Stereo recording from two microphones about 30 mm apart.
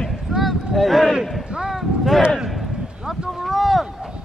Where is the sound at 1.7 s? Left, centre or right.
Centre.